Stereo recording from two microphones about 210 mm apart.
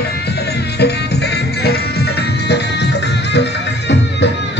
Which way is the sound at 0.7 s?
50° left (ahead or behind).